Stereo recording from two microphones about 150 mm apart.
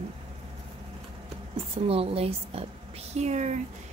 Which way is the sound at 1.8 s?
40° right (ahead or behind).